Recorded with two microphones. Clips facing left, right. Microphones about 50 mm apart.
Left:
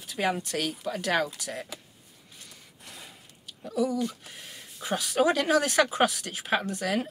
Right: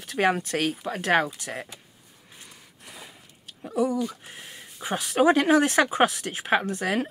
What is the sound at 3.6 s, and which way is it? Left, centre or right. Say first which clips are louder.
Speech: right 2 dB; right.